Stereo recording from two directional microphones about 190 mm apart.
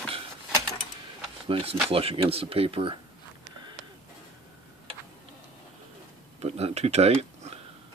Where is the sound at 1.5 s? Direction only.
30° right (ahead or behind).